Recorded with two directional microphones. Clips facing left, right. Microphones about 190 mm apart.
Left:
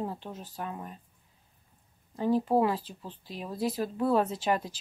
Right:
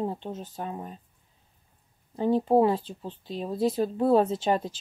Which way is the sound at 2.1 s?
25° right (ahead or behind).